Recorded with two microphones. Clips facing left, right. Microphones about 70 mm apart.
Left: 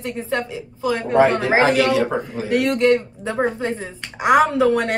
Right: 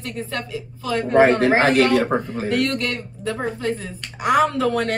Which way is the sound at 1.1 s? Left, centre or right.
Right.